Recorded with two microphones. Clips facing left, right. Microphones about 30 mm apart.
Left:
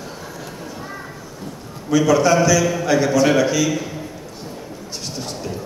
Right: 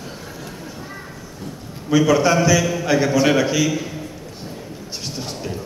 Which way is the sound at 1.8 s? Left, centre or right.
Centre.